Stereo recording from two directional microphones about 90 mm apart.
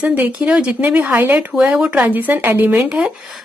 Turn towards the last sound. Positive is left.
turn(degrees=-10)  # may be behind; listen again after turning